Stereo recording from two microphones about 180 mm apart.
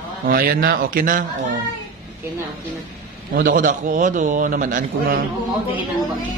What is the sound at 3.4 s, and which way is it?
A man's voice, 50° right (ahead or behind).